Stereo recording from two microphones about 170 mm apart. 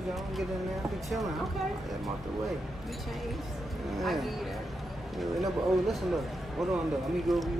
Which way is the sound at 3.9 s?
Centre (ahead or behind).